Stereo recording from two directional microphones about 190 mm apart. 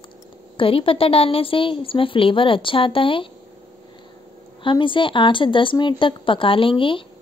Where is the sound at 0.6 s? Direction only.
30° left (ahead or behind).